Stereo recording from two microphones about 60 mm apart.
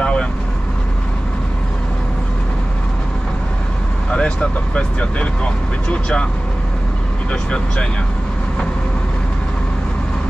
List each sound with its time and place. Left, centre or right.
0.0 s vehicle: centre
4.1 s speech: centre
7.5 s speech: centre